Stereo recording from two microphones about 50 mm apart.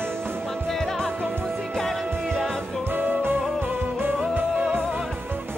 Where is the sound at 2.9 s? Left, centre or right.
Right.